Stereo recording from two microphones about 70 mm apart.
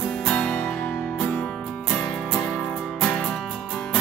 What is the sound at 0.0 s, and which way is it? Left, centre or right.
Music, centre.